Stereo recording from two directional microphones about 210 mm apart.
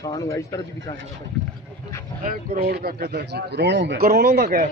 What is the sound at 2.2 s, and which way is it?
Speech, 45° right (ahead or behind).